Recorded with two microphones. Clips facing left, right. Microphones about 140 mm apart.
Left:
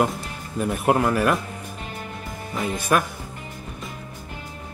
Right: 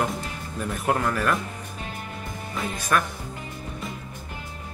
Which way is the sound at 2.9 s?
15° left (ahead or behind).